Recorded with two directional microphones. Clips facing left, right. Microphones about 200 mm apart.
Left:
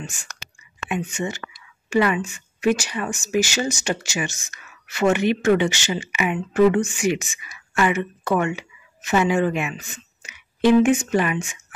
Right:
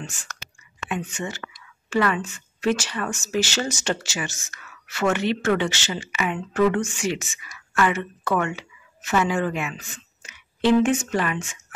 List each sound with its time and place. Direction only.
0.0 s speech: 10° left (ahead or behind)